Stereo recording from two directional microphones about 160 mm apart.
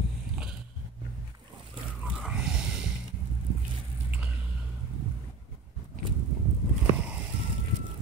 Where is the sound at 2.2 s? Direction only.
5° right (ahead or behind).